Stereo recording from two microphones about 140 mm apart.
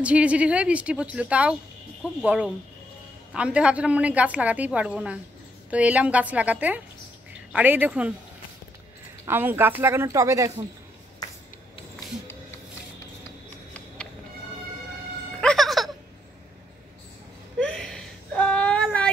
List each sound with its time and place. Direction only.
0.0 s a woman's voice: 10° right (ahead or behind)
9.2 s a woman's voice: 15° right (ahead or behind)
15.4 s music: centre (ahead or behind)
17.6 s whimper: 5° left (ahead or behind)